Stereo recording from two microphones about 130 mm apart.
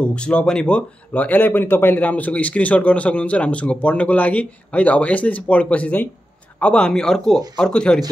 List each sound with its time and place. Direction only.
0.0 s speech: 10° left (ahead or behind)